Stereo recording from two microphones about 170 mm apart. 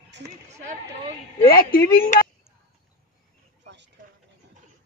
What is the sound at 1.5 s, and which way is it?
Speech, 60° left (ahead or behind).